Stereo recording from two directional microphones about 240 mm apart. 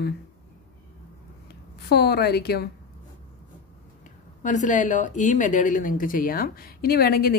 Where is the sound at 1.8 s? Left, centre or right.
Left.